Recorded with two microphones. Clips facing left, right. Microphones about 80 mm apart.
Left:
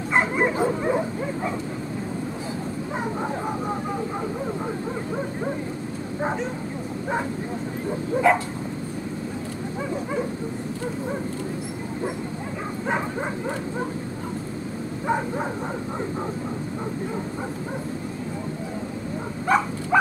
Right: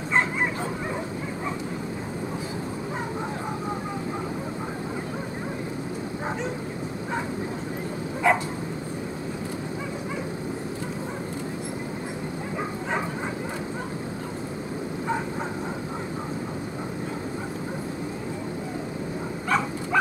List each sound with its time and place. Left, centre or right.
0.1 s bow-wow: centre
8.3 s dog: centre
19.4 s dog: left